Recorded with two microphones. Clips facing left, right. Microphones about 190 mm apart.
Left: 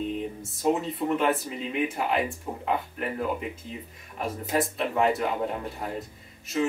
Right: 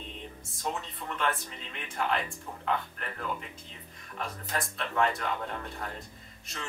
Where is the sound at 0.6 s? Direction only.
10° left (ahead or behind).